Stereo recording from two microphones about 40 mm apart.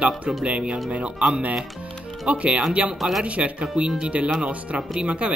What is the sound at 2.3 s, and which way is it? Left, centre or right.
Speech, right.